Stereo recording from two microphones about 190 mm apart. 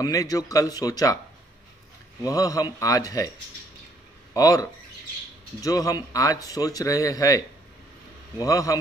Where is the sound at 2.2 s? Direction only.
20° left (ahead or behind).